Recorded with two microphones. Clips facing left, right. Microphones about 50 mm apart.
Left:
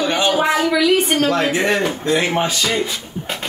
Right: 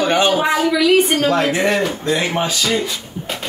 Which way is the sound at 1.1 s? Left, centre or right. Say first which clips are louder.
Right 1 dB; centre.